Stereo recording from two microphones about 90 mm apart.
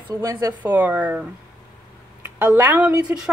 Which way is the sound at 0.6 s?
20° right (ahead or behind).